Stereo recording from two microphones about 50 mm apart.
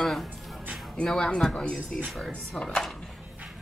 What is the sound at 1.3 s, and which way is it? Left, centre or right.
Speech, centre.